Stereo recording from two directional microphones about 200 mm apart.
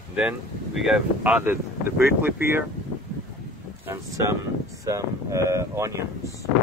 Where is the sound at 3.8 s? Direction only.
15° right (ahead or behind).